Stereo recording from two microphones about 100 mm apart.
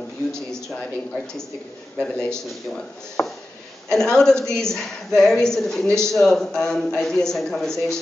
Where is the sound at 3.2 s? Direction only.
15° left (ahead or behind).